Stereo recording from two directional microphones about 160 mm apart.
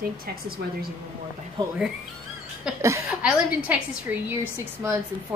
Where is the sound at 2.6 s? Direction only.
5° right (ahead or behind).